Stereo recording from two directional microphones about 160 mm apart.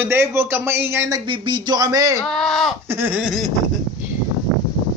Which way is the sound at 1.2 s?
30° right (ahead or behind).